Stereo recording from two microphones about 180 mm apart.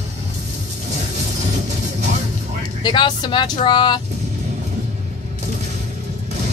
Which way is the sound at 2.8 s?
25° left (ahead or behind).